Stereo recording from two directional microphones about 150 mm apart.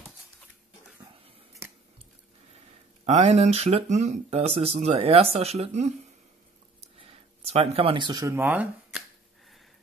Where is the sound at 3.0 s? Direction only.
45° right (ahead or behind).